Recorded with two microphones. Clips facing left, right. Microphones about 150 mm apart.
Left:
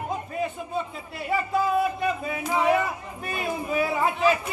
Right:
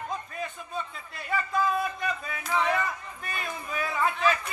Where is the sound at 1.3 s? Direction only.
15° left (ahead or behind).